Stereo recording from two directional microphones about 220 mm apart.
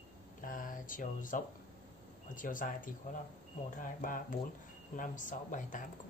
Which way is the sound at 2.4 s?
35° left (ahead or behind).